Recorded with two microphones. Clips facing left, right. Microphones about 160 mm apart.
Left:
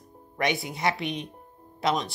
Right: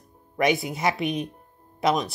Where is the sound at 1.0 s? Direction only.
25° left (ahead or behind).